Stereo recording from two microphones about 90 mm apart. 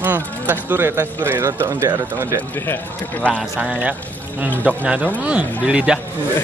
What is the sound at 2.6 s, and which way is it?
Speech, 25° left (ahead or behind).